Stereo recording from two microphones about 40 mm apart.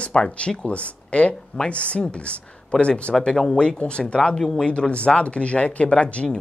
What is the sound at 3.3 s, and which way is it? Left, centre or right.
Speech, centre.